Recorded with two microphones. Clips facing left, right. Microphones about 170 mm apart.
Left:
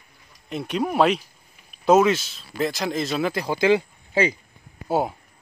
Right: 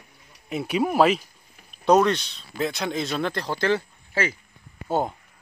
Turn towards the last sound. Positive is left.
turn(degrees=10)  # may be behind; listen again after turning